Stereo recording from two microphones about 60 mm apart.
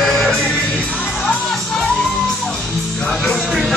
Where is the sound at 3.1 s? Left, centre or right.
Centre.